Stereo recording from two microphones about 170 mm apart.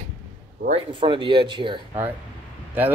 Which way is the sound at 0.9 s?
30° right (ahead or behind).